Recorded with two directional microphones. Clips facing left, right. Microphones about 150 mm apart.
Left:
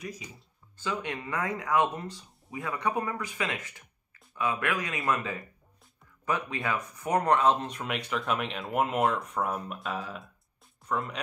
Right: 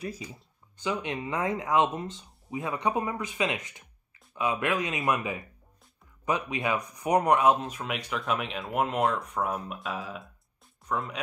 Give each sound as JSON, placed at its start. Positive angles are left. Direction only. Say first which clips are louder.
{"t": 0.7, "sound": "speech", "louder": "right 2 dB", "side_deg": -20}